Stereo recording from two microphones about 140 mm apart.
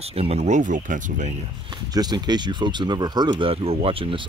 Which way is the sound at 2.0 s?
30° right (ahead or behind).